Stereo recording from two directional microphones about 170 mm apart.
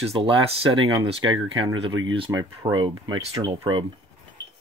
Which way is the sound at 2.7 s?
30° right (ahead or behind).